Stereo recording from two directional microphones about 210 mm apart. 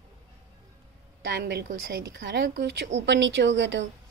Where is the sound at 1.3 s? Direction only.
50° right (ahead or behind).